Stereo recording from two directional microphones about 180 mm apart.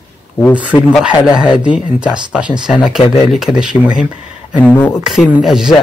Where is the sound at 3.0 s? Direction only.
30° left (ahead or behind).